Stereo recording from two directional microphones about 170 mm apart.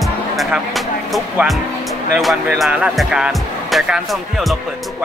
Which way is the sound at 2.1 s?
Centre (ahead or behind).